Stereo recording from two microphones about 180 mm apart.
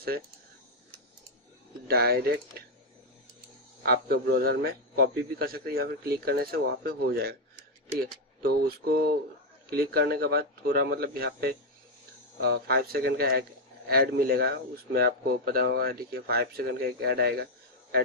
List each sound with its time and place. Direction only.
1.9 s a man's voice: 60° right (ahead or behind)
3.8 s a man's voice: 55° right (ahead or behind)
8.4 s a man's voice: 55° right (ahead or behind)